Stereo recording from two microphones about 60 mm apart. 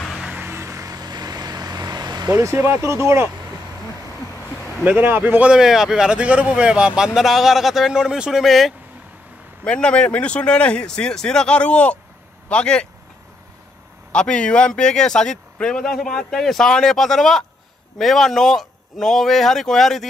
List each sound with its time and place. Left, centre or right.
0.4 s vehicle: right
0.8 s vehicle: right
2.3 s speech: right
4.8 s a man's voice: right
5.4 s a man's voice: centre
7.2 s speech: centre
9.7 s speech: centre
14.1 s speech: centre